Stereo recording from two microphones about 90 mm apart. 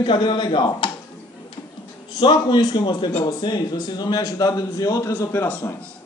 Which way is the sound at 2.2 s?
55° left (ahead or behind).